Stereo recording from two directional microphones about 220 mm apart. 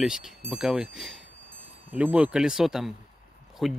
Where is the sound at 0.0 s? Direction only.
Centre (ahead or behind).